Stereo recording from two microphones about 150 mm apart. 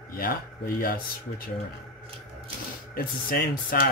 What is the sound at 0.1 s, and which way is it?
Speech, 75° left (ahead or behind).